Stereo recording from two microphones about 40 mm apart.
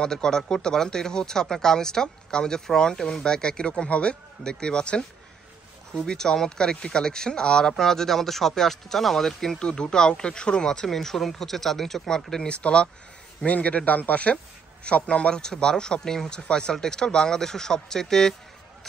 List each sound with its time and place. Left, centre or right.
0.0 s speech: centre
9.6 s speech: centre
10.9 s speech: centre
12.4 s a man's voice: left